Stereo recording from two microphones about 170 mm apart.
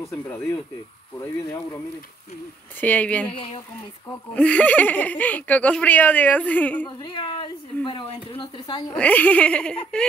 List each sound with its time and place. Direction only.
1.2 s speech: 15° left (ahead or behind)
2.8 s speech: 10° left (ahead or behind)
4.3 s speech: 5° left (ahead or behind)
7.0 s speech: 25° left (ahead or behind)
8.9 s speech: 10° left (ahead or behind)